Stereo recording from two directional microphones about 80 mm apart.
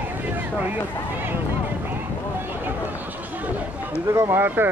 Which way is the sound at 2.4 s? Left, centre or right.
Right.